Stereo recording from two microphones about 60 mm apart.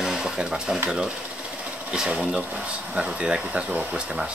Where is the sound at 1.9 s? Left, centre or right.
Centre.